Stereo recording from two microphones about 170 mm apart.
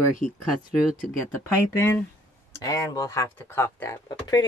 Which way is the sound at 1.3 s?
15° left (ahead or behind).